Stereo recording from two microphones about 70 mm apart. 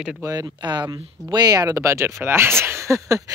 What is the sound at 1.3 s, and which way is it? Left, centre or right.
Speech, right.